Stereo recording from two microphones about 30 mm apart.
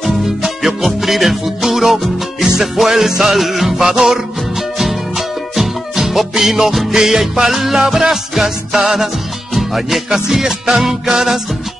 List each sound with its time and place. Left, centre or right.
0.0 s music: centre
3.8 s music: centre
5.6 s music: centre
7.0 s music: centre